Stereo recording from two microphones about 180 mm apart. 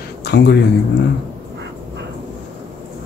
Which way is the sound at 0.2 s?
70° left (ahead or behind).